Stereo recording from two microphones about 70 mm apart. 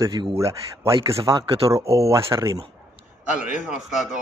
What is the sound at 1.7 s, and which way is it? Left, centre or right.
Speech, right.